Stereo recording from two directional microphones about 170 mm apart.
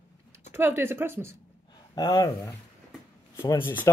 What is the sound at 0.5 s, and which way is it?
Speech, 15° right (ahead or behind).